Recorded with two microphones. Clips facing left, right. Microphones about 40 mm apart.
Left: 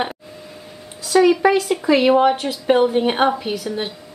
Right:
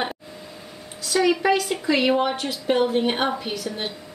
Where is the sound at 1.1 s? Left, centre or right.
Centre.